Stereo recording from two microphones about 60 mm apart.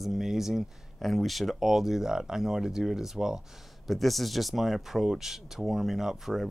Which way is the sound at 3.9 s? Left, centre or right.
Centre.